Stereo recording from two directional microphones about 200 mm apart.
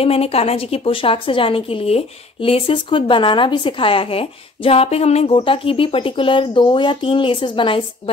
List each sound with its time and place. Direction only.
0.0 s a woman's voice: 30° left (ahead or behind)